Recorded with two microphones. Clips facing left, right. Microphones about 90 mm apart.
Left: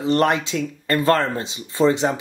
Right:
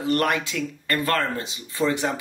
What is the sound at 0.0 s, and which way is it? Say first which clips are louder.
Speech: left 4 dB; 25° left (ahead or behind).